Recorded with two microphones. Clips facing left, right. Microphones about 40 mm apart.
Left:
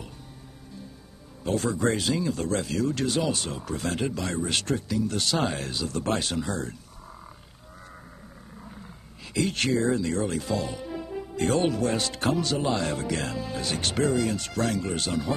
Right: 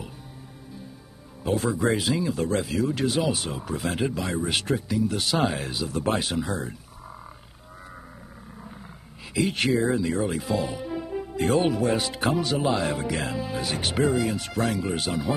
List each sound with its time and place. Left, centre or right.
1.4 s speech: centre
9.3 s speech: centre